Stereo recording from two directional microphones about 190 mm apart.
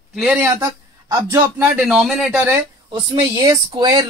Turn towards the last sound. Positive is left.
turn(degrees=-20)  # may be behind; listen again after turning